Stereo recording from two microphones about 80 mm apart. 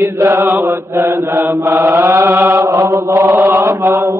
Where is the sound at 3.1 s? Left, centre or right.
Right.